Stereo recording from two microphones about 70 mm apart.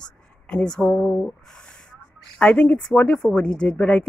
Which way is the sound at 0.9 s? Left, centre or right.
Centre.